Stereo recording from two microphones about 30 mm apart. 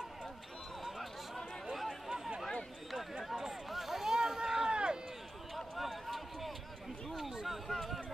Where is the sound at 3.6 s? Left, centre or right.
Centre.